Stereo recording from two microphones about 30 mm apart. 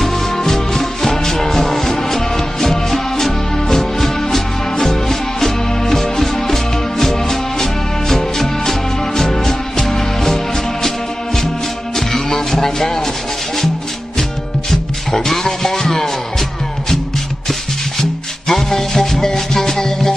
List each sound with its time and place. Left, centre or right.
0.0 s music: centre
12.1 s music: centre
14.7 s music: centre
18.5 s music: centre